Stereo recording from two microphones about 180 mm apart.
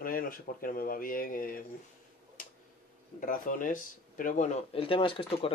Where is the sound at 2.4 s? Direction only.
50° left (ahead or behind).